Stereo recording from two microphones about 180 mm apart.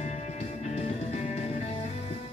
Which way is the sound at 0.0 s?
40° left (ahead or behind).